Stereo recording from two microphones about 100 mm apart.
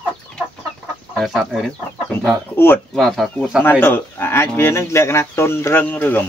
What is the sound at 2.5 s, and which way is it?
Speech, 20° left (ahead or behind).